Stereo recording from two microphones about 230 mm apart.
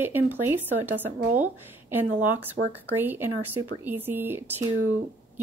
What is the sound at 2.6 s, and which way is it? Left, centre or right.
Speech, right.